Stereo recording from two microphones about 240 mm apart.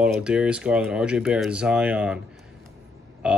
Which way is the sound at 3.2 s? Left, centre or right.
Centre.